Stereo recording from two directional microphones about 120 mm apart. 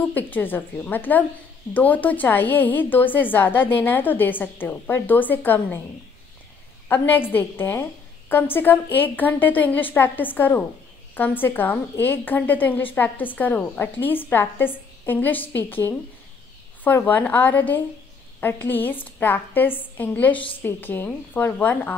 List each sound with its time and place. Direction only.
0.0 s a woman's voice: 15° left (ahead or behind)
6.9 s a woman's voice: 15° left (ahead or behind)